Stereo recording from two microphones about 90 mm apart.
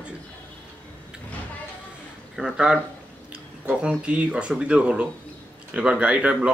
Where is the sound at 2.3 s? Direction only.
5° right (ahead or behind).